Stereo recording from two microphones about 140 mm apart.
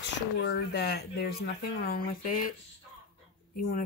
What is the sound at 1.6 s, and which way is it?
Speech, 90° left.